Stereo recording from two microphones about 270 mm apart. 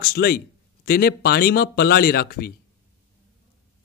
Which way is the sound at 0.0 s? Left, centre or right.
Left.